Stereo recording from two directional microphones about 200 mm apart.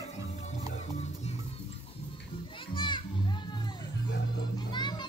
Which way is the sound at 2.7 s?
25° left (ahead or behind).